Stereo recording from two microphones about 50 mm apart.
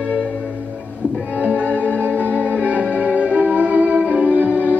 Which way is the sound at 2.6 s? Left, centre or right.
Right.